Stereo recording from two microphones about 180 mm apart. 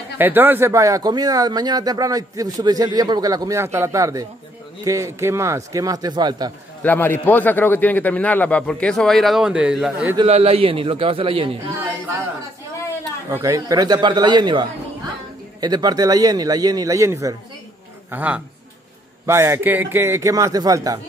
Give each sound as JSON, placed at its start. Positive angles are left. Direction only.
{"t": 0.2, "sound": "speech", "side_deg": -10}
{"t": 6.8, "sound": "a man's voice", "side_deg": 10}
{"t": 10.1, "sound": "speech", "side_deg": -35}
{"t": 13.3, "sound": "a man's voice", "side_deg": -15}